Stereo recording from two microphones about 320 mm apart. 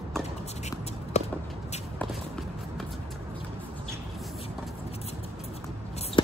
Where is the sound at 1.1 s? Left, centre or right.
Left.